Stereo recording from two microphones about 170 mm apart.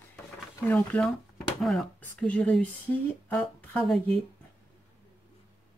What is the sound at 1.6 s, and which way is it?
Speech, centre (ahead or behind).